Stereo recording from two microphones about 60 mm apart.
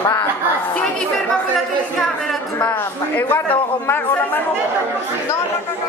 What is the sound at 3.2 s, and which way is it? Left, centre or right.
A man's voice, left.